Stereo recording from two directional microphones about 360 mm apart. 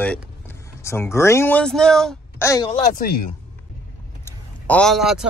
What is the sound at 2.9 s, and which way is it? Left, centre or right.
Speech, left.